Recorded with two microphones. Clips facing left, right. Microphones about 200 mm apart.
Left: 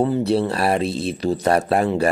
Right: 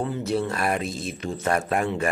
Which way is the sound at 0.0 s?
35° left (ahead or behind).